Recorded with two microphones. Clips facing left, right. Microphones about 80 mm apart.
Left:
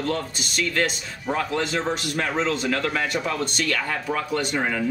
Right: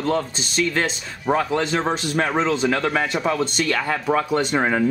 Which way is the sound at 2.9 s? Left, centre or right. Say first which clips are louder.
Right 4 dB; right.